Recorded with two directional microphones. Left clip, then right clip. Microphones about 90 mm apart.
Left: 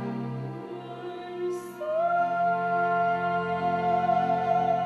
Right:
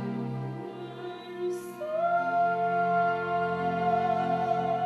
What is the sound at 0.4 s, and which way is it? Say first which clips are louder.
Music: left 1 dB; 5° right (ahead or behind).